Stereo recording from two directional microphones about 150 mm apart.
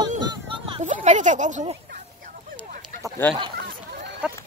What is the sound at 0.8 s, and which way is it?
Speech, 55° right (ahead or behind).